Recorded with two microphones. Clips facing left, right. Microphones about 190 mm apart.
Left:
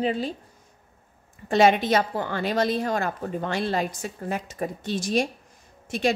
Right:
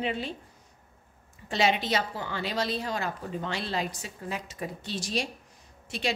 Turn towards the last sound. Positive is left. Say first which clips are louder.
# left 7 dB
turn(degrees=50)  # may be behind; listen again after turning